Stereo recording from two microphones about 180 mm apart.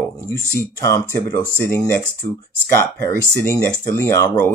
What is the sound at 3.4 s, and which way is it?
Speech, 15° left (ahead or behind).